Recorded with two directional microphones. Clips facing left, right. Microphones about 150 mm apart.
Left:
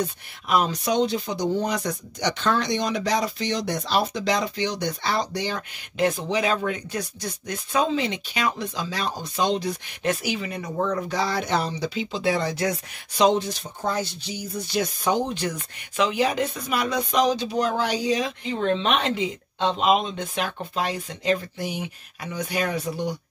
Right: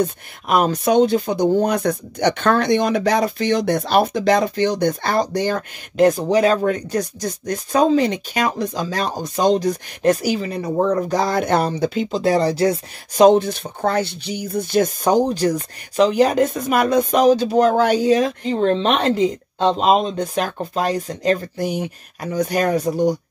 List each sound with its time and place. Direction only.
0.0 s speech: 50° right (ahead or behind); by 12.8 s 30° right (ahead or behind)
13.1 s speech: 50° right (ahead or behind)